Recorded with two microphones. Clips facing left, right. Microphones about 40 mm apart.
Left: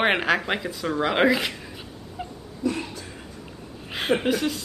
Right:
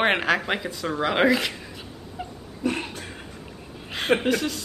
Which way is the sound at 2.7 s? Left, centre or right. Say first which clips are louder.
Even; right.